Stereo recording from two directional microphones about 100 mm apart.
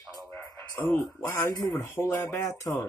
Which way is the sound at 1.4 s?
40° left (ahead or behind).